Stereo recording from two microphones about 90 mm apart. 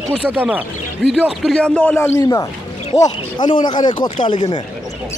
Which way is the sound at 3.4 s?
55° left (ahead or behind).